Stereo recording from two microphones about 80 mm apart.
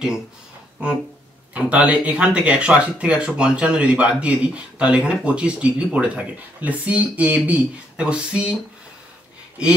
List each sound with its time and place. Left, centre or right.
1.5 s speech: centre